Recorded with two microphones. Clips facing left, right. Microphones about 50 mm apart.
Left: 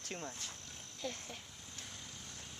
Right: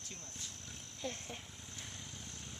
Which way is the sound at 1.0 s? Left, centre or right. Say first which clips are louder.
Even; centre.